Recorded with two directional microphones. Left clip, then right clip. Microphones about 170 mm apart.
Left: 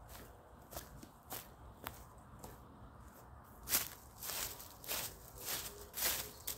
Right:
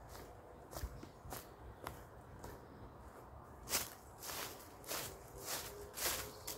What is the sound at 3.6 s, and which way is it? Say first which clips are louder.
Walk: left 1 dB; 70° left (ahead or behind).